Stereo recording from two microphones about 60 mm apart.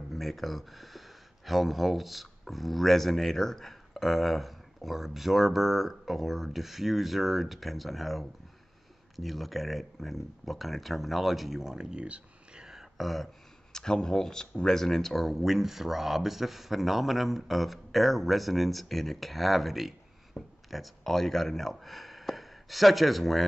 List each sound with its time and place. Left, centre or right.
0.1 s speech: centre
13.7 s speech: centre